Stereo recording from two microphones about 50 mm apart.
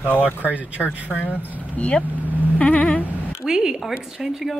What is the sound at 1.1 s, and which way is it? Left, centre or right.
Speech, left.